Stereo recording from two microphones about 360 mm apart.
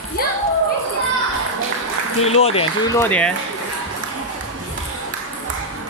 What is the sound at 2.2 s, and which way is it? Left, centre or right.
Speech, centre.